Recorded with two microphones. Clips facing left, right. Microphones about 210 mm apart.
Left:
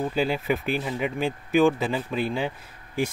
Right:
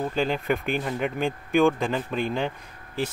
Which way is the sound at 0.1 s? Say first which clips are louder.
Even; 5° left (ahead or behind).